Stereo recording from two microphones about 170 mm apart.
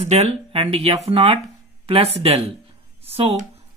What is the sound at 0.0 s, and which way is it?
Speech, 40° right (ahead or behind).